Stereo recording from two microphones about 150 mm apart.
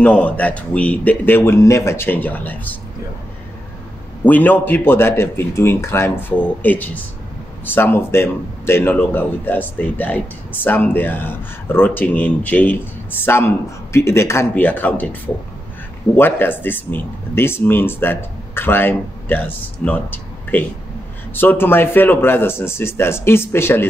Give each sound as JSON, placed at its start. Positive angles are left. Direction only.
{"t": 0.0, "sound": "speech", "side_deg": 10}
{"t": 4.2, "sound": "speech", "side_deg": 10}
{"t": 16.2, "sound": "speech", "side_deg": 15}